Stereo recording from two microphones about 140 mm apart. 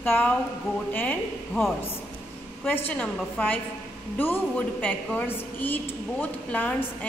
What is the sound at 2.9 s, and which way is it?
A woman's voice, 10° left (ahead or behind).